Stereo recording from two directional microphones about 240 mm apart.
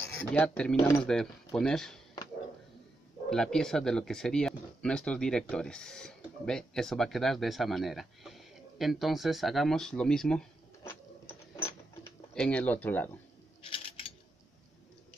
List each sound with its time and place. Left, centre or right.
0.0 s speech: centre
1.0 s speech: centre
3.3 s speech: centre
10.8 s printer: centre
12.4 s speech: centre
13.7 s mechanisms: left